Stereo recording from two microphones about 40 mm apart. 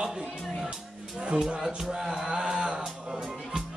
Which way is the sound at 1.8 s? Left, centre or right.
Centre.